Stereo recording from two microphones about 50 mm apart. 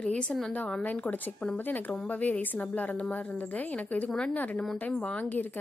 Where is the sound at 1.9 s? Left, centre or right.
Left.